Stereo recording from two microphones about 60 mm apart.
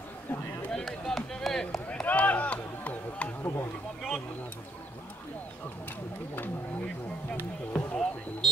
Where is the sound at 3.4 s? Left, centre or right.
Left.